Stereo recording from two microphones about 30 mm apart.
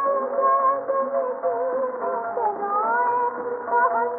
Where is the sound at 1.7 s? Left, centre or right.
Centre.